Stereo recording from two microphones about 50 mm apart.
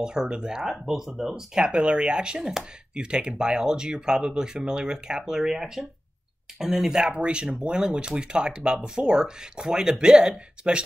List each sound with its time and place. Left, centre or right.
0.0 s speech: centre